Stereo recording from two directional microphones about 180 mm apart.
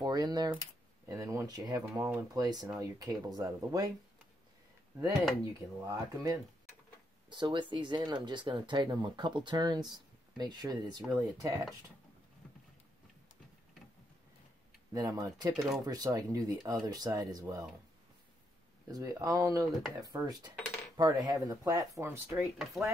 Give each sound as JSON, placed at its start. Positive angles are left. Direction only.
{"t": 0.0, "sound": "typing", "side_deg": -20}
{"t": 1.0, "sound": "speech", "side_deg": -15}
{"t": 5.9, "sound": "speech", "side_deg": -15}
{"t": 14.9, "sound": "speech", "side_deg": -20}
{"t": 18.9, "sound": "speech", "side_deg": -20}
{"t": 22.6, "sound": "speech", "side_deg": 0}